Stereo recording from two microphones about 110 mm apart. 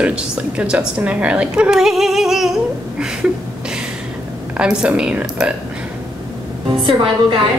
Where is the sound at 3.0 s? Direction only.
5° right (ahead or behind).